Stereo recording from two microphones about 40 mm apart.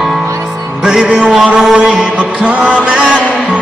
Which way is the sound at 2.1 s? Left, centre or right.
Right.